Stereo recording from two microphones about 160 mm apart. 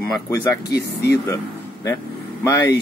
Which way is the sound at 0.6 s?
85° left.